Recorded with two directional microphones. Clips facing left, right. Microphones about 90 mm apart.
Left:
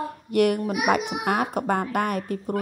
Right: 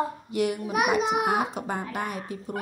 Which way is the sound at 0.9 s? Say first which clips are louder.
Left 1 dB; 60° left (ahead or behind).